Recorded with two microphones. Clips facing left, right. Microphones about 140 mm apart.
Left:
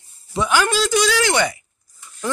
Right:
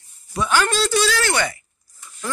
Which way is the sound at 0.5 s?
10° left (ahead or behind).